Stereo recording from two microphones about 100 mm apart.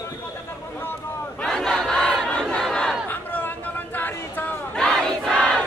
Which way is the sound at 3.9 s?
20° left (ahead or behind).